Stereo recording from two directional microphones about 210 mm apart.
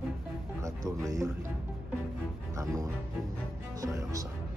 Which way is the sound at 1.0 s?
15° right (ahead or behind).